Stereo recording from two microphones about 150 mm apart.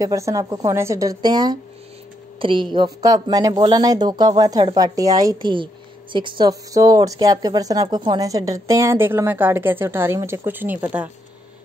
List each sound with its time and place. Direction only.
0.0 s a woman's voice: 20° right (ahead or behind)